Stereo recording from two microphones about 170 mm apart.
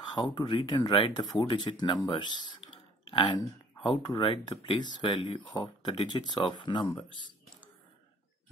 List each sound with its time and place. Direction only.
0.0 s speech: 25° left (ahead or behind)
2.1 s typing: 25° left (ahead or behind)
3.8 s speech: 25° left (ahead or behind)